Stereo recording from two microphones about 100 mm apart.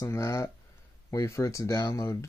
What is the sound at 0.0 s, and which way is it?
Speech, 30° left (ahead or behind).